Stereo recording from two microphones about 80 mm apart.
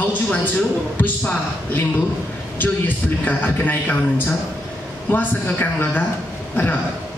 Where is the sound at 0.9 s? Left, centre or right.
Left.